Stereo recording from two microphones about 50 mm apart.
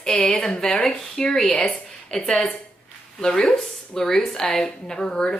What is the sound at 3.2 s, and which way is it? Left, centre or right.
A woman's voice, left.